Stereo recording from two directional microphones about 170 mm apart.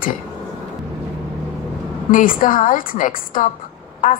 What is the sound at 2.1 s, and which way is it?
Speech, 55° left (ahead or behind).